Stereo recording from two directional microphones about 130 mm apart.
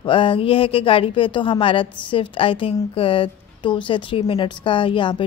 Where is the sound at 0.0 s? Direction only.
40° left (ahead or behind).